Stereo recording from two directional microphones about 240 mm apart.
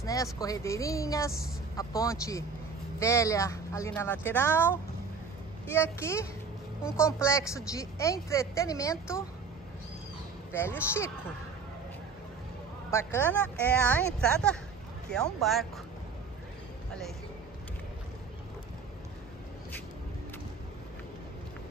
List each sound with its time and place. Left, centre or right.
0.0 s speech: centre
10.5 s speech: centre
12.9 s speech: centre